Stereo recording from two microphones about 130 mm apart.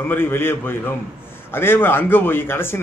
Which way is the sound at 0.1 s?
15° left (ahead or behind).